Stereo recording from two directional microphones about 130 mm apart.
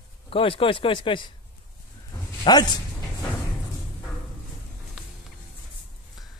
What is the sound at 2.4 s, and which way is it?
Speech, 30° left (ahead or behind).